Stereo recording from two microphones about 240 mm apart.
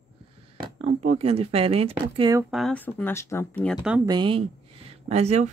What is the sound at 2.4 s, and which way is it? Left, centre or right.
Speech, centre.